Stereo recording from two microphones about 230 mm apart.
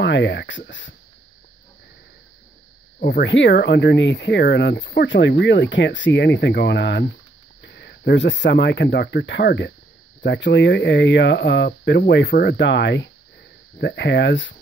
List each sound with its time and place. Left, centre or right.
0.0 s speech: left
3.0 s speech: left